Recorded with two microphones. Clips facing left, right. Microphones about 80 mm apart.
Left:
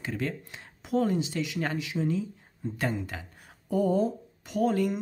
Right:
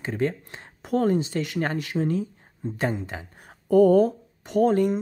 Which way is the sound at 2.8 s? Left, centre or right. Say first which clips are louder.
Right 4 dB; right.